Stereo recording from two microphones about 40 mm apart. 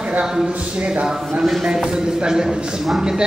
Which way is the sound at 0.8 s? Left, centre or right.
Right.